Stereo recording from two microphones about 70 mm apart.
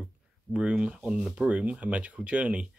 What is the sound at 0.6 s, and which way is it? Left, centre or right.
Speech, centre.